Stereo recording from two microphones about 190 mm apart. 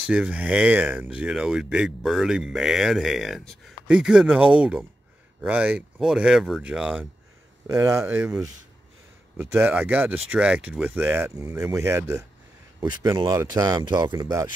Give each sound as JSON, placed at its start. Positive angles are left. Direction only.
{"t": 0.0, "sound": "speech", "side_deg": -5}
{"t": 7.6, "sound": "speech", "side_deg": -15}
{"t": 9.4, "sound": "speech", "side_deg": -10}